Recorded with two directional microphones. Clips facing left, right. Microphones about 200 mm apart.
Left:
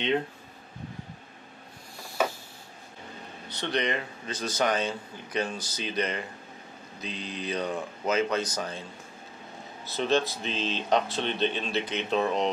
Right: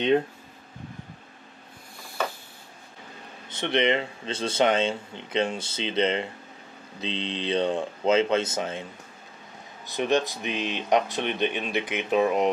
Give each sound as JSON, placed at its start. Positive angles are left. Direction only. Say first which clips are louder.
{"t": 3.4, "sound": "speech", "louder": "right 5 dB", "side_deg": -20}
{"t": 9.8, "sound": "speech", "louder": "right 2 dB", "side_deg": -15}